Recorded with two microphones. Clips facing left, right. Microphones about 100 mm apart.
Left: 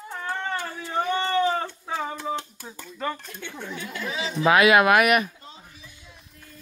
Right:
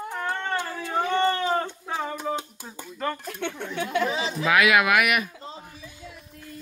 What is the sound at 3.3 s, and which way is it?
Speech, 65° right (ahead or behind).